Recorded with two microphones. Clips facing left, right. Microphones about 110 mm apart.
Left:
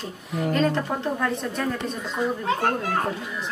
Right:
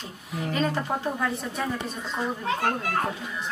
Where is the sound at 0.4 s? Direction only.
5° right (ahead or behind).